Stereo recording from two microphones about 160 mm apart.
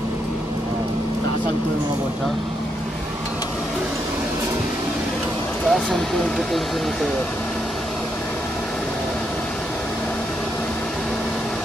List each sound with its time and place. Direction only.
5.7 s speech: 5° left (ahead or behind)